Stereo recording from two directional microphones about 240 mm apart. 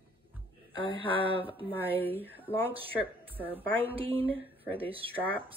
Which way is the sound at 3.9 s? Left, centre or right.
Right.